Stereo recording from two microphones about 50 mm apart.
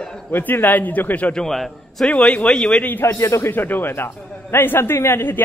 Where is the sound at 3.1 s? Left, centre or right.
Left.